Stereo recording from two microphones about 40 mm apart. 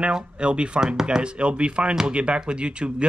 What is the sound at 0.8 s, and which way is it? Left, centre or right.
Speech, centre.